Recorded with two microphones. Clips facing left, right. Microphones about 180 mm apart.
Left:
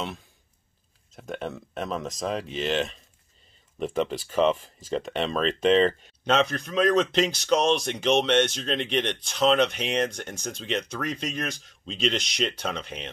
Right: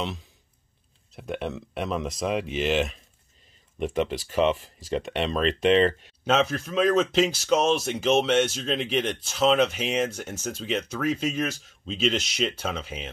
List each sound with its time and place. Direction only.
1.1 s speech: 5° right (ahead or behind)